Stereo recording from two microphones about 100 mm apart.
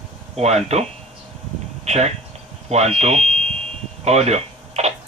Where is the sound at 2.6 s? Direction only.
90° right.